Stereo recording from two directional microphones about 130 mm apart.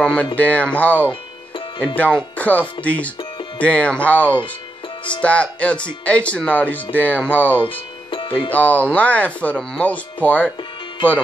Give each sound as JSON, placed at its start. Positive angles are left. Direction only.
{"t": 0.0, "sound": "speech", "side_deg": 10}
{"t": 8.1, "sound": "music", "side_deg": 40}
{"t": 8.5, "sound": "speech", "side_deg": 10}